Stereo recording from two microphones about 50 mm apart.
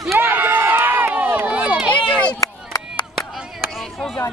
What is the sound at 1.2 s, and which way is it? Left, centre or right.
Run, right.